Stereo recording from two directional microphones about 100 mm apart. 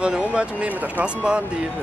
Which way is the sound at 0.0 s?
10° right (ahead or behind).